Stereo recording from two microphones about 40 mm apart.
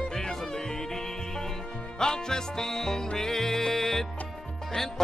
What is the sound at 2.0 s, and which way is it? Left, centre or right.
Music, centre.